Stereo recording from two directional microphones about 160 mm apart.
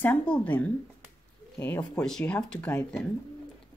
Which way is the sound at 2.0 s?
5° left (ahead or behind).